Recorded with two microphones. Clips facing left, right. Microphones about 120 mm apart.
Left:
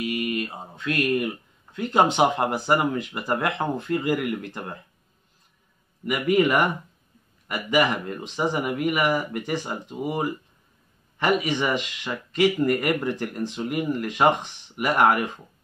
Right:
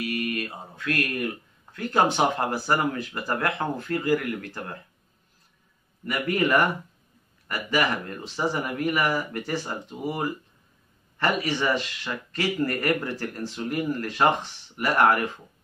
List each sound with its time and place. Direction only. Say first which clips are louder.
0.0 s speech: left 2 dB; 20° left (ahead or behind)
6.0 s speech: left 4 dB; 15° left (ahead or behind)